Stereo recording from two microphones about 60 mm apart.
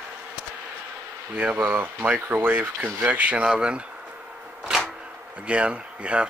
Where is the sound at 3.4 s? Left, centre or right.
Centre.